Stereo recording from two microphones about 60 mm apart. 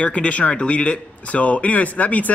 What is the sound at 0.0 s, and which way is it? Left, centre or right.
Speech, left.